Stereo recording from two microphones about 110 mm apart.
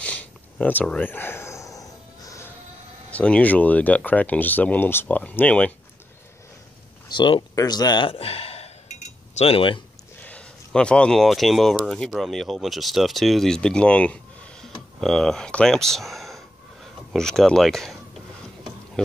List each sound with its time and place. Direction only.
0.0 s a sound: 10° left (ahead or behind); by 2.5 s 30° left (ahead or behind)
3.1 s speech: 15° left (ahead or behind)
7.1 s speech: 45° left (ahead or behind)
8.1 s speech: 65° left (ahead or behind)
10.2 s speech: 10° left (ahead or behind)